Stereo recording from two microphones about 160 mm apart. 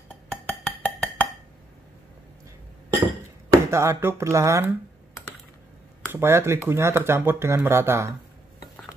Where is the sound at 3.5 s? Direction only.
20° right (ahead or behind).